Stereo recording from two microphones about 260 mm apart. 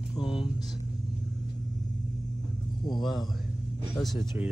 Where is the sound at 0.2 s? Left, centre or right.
Centre.